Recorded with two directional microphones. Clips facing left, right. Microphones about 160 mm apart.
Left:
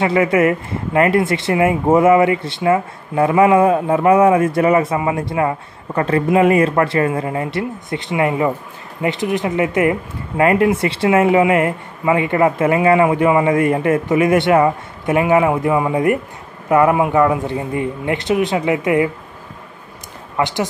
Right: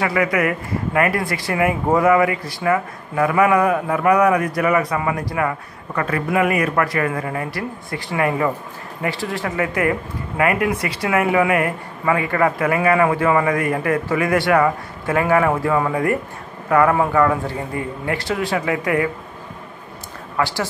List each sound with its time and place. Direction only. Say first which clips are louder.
0.0 s speech: left 5 dB; 25° left (ahead or behind)
20.3 s a woman's voice: left 3 dB; 20° left (ahead or behind)